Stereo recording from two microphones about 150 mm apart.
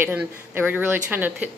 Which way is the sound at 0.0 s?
15° right (ahead or behind).